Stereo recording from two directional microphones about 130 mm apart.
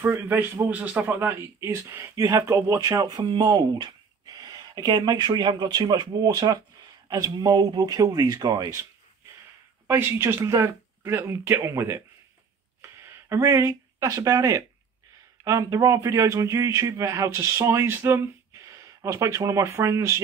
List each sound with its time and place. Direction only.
0.0 s a man's voice: 15° right (ahead or behind)
9.8 s a man's voice: 15° right (ahead or behind)
13.0 s a man's voice: 20° right (ahead or behind)